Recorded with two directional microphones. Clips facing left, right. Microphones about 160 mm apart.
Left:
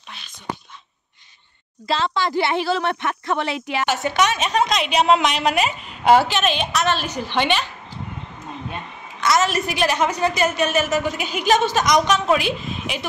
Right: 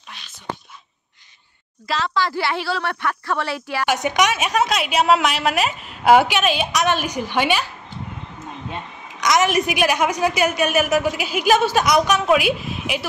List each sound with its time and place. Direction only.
1.9 s a woman's voice: 25° left (ahead or behind)
3.8 s a woman's voice: 15° right (ahead or behind)
9.2 s a woman's voice: 15° right (ahead or behind)